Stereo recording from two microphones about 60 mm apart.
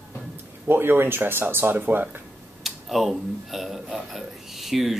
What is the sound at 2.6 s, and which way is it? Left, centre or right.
Speech, centre.